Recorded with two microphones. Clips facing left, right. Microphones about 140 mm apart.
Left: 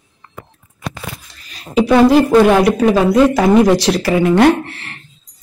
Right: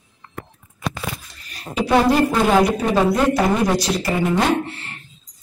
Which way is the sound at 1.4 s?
90° left.